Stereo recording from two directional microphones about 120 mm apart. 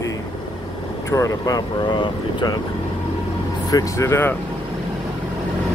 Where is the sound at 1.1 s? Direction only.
30° left (ahead or behind).